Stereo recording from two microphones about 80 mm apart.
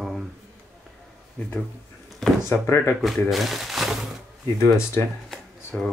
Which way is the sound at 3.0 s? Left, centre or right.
Centre.